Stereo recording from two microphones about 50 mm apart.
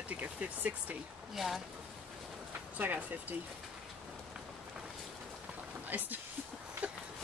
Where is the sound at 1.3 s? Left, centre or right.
Centre.